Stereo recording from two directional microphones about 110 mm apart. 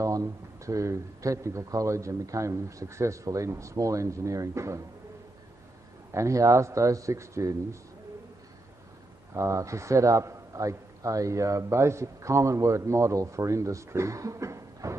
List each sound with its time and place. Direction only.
0.0 s a man's voice: 30° right (ahead or behind)
6.1 s a man's voice: 30° right (ahead or behind)
9.3 s a man's voice: 30° right (ahead or behind)